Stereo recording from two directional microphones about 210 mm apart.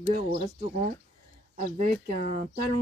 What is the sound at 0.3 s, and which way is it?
Speech, 30° right (ahead or behind).